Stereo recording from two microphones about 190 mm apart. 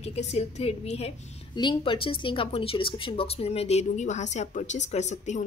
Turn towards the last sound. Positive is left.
turn(degrees=35)  # may be behind; listen again after turning